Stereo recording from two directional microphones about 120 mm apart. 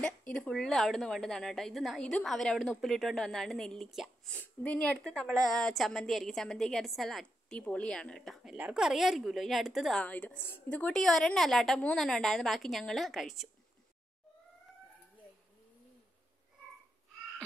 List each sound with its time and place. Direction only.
0.0 s a woman's voice: 5° left (ahead or behind)
4.3 s a woman's voice: 10° left (ahead or behind)
8.5 s a woman's voice: 5° right (ahead or behind)
10.0 s a woman's voice: 15° left (ahead or behind)
10.9 s a woman's voice: 5° left (ahead or behind)